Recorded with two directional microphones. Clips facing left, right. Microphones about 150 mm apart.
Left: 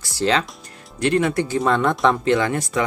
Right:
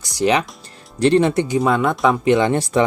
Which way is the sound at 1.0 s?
30° right (ahead or behind).